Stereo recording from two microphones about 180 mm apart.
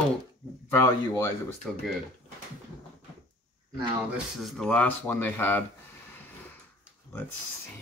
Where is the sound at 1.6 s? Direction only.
Centre (ahead or behind).